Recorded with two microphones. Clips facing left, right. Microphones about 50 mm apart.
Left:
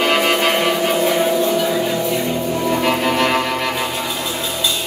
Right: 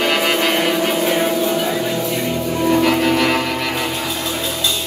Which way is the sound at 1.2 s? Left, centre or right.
Centre.